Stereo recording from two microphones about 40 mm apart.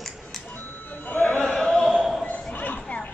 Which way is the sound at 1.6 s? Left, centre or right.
Left.